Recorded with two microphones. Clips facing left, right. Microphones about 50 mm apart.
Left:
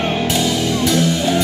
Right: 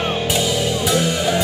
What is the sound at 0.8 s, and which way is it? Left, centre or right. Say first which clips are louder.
Music: left 3 dB; right.